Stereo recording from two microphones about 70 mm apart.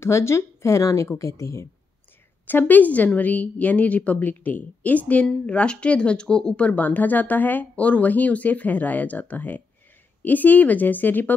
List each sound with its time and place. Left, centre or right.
0.0 s a woman's voice: left
2.4 s a woman's voice: left